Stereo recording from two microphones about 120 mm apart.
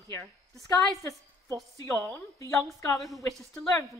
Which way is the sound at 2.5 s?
25° left (ahead or behind).